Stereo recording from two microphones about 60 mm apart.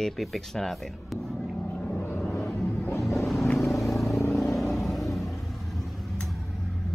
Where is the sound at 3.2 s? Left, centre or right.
Centre.